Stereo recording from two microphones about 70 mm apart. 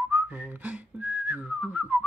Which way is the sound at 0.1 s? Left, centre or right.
Right.